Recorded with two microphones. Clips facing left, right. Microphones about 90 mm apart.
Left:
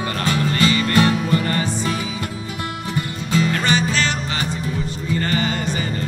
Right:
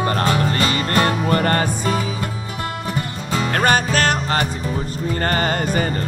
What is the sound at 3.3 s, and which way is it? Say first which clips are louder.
Music: right 2 dB; 45° right (ahead or behind).